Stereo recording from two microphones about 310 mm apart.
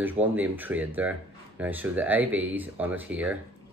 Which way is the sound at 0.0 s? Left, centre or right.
Centre.